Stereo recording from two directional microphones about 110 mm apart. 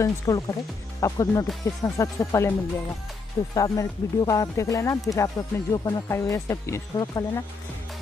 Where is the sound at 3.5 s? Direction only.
30° left (ahead or behind).